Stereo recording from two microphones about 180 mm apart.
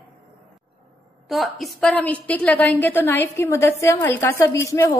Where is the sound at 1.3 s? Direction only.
Centre (ahead or behind).